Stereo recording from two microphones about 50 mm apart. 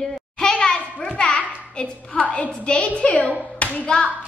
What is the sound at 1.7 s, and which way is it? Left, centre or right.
A woman's voice, left.